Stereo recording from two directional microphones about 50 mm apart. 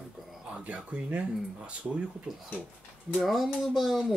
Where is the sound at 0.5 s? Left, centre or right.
Right.